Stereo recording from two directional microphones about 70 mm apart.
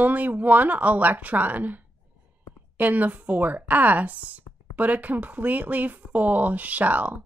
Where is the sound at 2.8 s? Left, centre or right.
Right.